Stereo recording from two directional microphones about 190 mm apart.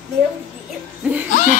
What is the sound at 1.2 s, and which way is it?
Laughter, 40° left (ahead or behind).